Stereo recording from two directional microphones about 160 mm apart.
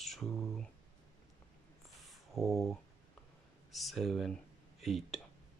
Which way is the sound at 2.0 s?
Centre (ahead or behind).